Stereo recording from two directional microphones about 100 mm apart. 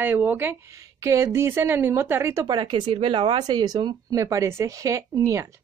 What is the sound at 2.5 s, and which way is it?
Speech, 50° right (ahead or behind).